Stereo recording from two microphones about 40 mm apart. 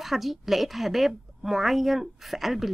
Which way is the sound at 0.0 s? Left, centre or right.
Centre.